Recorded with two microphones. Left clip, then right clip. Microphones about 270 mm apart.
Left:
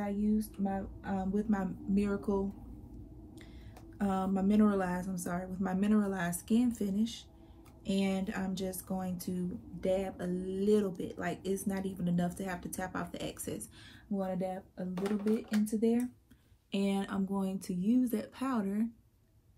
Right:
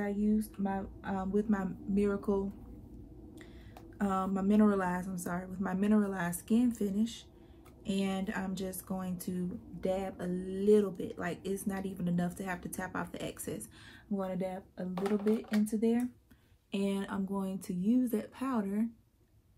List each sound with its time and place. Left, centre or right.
0.2 s speech: centre
4.0 s speech: centre
7.8 s speech: centre
15.0 s speech: right
15.6 s speech: centre